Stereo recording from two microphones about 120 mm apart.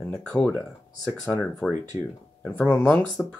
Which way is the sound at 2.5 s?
10° left (ahead or behind).